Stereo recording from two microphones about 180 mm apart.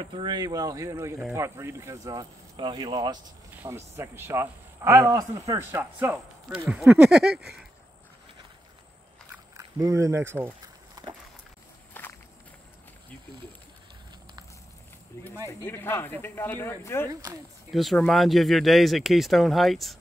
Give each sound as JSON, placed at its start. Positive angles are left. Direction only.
{"t": 0.0, "sound": "speech", "side_deg": -25}
{"t": 3.5, "sound": "speech", "side_deg": -15}
{"t": 9.6, "sound": "a sound", "side_deg": -20}
{"t": 11.9, "sound": "walk", "side_deg": 10}
{"t": 15.1, "sound": "a sound", "side_deg": 15}
{"t": 15.6, "sound": "speech", "side_deg": 10}
{"t": 17.1, "sound": "speech", "side_deg": -20}
{"t": 17.7, "sound": "speech", "side_deg": 0}